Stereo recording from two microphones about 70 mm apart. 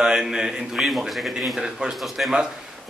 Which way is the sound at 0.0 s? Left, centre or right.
Centre.